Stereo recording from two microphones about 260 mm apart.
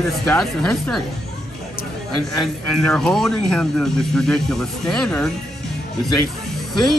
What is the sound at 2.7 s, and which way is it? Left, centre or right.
Speech, centre.